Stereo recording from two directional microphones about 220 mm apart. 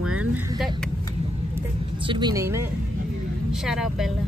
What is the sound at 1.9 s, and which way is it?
Speech, 20° right (ahead or behind).